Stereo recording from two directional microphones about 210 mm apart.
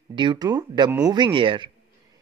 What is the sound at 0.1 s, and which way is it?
Speech, 20° right (ahead or behind).